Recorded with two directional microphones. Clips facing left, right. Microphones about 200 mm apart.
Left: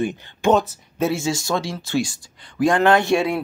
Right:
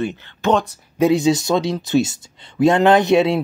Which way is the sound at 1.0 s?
20° right (ahead or behind).